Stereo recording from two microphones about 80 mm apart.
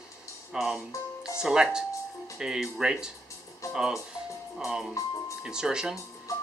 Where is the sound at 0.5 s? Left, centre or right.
Centre.